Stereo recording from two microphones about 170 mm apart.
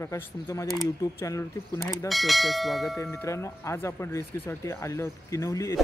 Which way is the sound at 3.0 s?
15° left (ahead or behind).